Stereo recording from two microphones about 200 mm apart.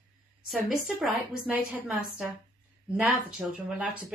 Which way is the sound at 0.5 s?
5° right (ahead or behind).